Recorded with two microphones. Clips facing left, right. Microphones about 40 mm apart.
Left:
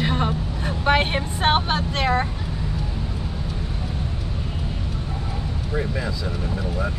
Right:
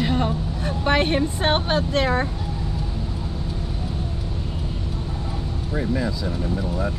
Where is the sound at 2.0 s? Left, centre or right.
Left.